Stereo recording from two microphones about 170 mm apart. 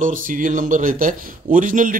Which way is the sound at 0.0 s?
50° right (ahead or behind).